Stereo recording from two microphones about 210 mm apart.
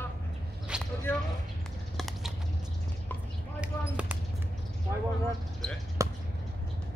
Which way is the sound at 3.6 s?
5° right (ahead or behind).